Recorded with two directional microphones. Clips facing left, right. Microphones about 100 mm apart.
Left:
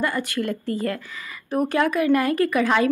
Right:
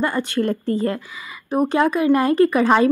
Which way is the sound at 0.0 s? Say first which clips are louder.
Right 4 dB; 30° right (ahead or behind).